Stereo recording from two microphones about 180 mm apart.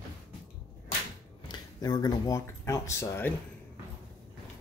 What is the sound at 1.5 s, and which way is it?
Speech, 20° left (ahead or behind).